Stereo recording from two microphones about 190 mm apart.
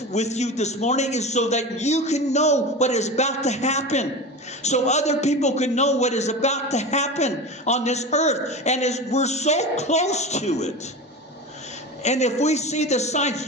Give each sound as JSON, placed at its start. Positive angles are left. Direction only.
{"t": 0.1, "sound": "a man's voice", "side_deg": 35}
{"t": 12.0, "sound": "a man's voice", "side_deg": 35}